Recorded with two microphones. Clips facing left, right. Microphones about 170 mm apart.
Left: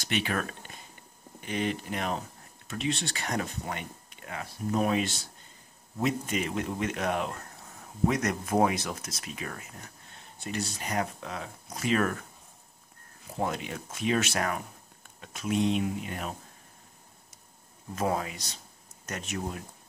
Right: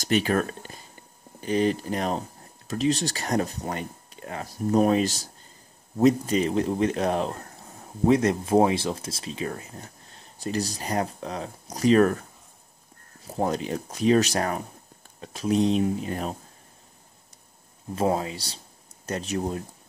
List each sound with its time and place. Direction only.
0.0 s speech: 40° right (ahead or behind)
17.9 s speech: 30° right (ahead or behind)